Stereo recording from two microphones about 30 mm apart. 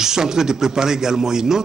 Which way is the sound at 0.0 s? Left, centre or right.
Centre.